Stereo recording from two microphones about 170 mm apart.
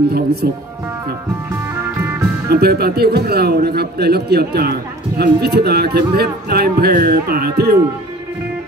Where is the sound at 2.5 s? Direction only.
70° right (ahead or behind).